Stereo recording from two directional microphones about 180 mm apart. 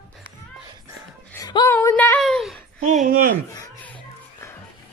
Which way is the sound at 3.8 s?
10° left (ahead or behind).